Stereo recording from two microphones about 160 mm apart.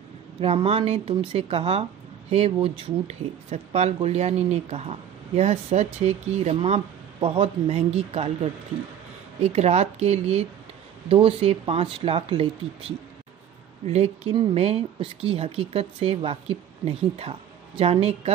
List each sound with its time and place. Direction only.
0.4 s speech: 35° right (ahead or behind)
9.4 s speech: 40° right (ahead or behind)